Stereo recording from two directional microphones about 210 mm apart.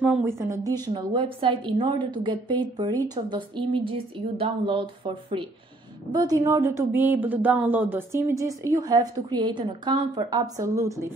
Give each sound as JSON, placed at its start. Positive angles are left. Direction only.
{"t": 0.0, "sound": "a woman's voice", "side_deg": -5}